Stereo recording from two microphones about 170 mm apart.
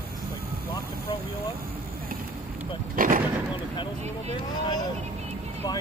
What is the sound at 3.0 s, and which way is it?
Speech, 55° right (ahead or behind).